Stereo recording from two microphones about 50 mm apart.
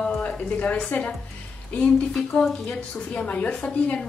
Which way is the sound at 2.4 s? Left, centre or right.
Centre.